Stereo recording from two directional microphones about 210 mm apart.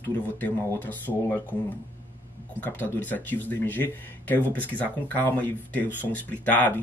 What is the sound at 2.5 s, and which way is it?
Speech, 10° left (ahead or behind).